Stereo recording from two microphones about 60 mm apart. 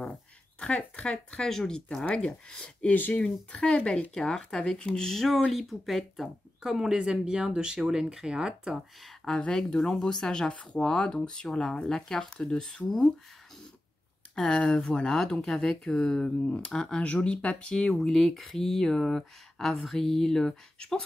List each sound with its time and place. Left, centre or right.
0.1 s speech: left
2.9 s speech: left; by 8.7 s centre
9.0 s speech: centre
14.3 s speech: centre
17.9 s speech: centre